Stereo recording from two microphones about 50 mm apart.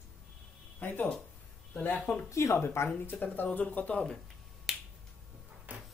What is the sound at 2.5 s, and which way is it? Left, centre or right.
Speech, left.